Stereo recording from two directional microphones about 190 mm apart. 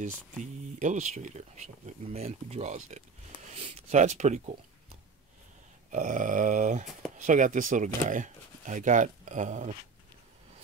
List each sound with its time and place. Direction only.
0.0 s speech: 40° right (ahead or behind)
5.9 s a sound: 45° right (ahead or behind)
7.2 s speech: 40° right (ahead or behind)